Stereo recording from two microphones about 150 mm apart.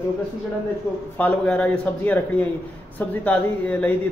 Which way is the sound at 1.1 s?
10° left (ahead or behind).